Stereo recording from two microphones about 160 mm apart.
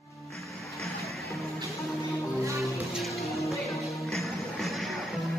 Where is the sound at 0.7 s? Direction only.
Centre (ahead or behind).